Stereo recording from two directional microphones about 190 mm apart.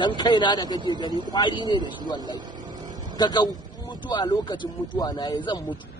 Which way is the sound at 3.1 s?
20° left (ahead or behind).